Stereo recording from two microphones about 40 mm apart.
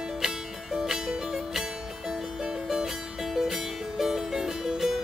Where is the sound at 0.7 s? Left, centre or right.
Centre.